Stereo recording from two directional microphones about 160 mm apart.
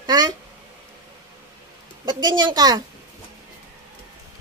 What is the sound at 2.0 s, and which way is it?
Speech, 25° right (ahead or behind).